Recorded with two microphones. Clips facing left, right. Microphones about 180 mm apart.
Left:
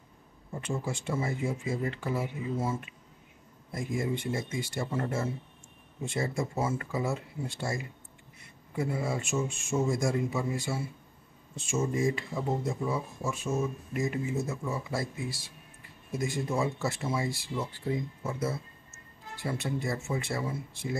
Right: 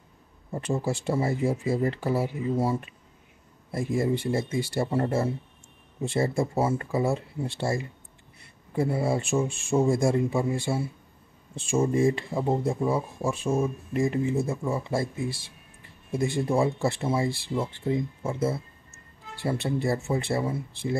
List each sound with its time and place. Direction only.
0.6 s speech: 35° right (ahead or behind)